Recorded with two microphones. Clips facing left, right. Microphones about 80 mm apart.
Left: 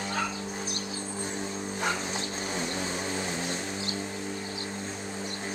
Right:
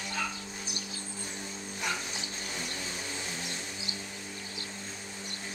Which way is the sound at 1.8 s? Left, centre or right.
Left.